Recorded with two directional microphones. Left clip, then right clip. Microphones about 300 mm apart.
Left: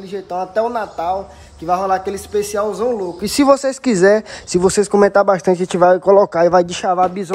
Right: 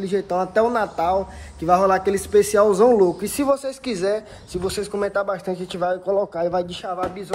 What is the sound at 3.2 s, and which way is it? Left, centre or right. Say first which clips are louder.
Speech: left 8 dB; left.